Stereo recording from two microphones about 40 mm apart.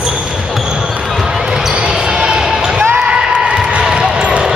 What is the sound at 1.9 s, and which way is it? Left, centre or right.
Basketball bounce, centre.